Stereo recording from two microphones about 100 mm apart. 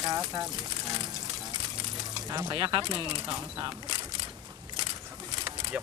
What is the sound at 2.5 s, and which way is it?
Speech, 55° right (ahead or behind).